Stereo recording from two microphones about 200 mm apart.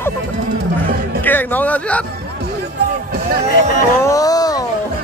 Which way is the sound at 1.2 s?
10° left (ahead or behind).